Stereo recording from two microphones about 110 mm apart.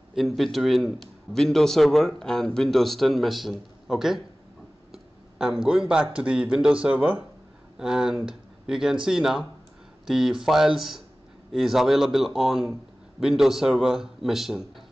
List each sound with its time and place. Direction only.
0.3 s a man's voice: centre (ahead or behind)